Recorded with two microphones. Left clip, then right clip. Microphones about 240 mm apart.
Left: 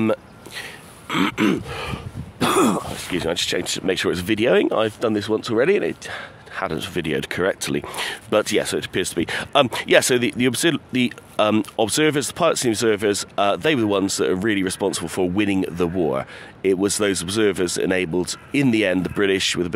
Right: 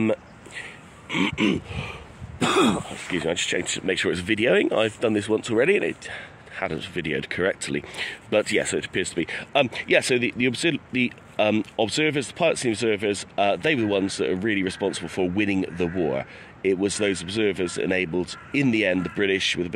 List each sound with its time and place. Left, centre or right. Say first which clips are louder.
0.0 s speech: left 3 dB; centre
1.0 s throat clearing: left 3 dB; left
3.1 s speech: left 2 dB; centre